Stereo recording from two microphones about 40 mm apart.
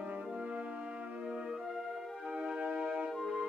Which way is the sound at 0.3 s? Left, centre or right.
Right.